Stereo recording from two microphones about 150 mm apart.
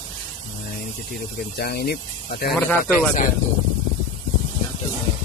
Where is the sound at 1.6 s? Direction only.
90° left.